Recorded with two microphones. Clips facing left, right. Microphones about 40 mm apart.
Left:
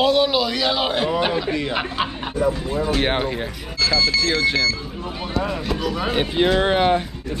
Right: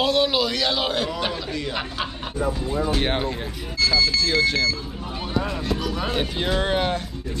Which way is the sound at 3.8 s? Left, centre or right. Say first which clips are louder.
Left 2 dB; left.